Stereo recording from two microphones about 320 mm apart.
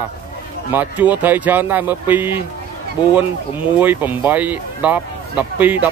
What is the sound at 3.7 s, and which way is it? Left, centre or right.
Speech, centre.